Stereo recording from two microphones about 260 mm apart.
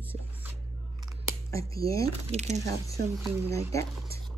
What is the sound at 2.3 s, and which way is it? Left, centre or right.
Speech, right.